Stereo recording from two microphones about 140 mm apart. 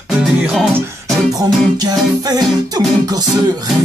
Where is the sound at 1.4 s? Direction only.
25° right (ahead or behind).